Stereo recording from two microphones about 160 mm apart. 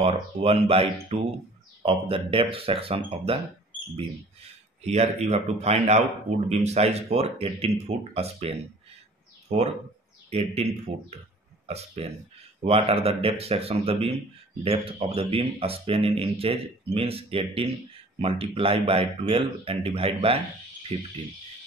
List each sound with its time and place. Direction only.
0.0 s speech: 40° right (ahead or behind)
4.8 s speech: 40° right (ahead or behind)